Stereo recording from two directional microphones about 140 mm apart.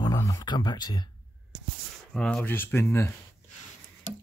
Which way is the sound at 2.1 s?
5° left (ahead or behind).